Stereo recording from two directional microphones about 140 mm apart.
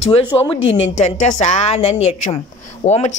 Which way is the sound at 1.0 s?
60° left (ahead or behind).